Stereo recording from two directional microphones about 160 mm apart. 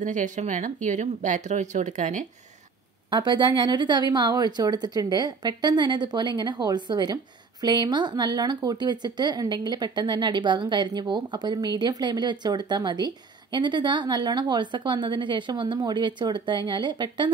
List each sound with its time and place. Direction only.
0.0 s speech: 50° right (ahead or behind)
3.1 s speech: 30° right (ahead or behind)